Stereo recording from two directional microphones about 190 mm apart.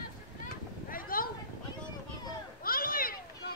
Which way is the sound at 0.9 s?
50° left (ahead or behind).